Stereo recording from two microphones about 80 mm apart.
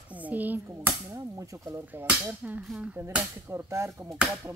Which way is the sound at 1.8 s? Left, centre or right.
Right.